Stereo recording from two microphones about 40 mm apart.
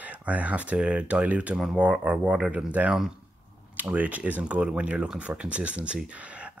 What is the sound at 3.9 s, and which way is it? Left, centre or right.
Speech, right.